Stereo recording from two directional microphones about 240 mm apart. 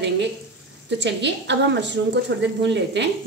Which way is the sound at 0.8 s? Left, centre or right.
Right.